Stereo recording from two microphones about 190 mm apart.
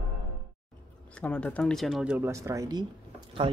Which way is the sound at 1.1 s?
5° left (ahead or behind).